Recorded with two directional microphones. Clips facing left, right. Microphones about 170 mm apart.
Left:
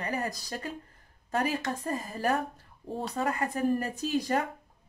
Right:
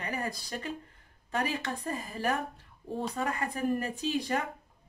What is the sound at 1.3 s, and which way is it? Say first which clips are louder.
A woman's voice: left 3 dB; 40° left (ahead or behind).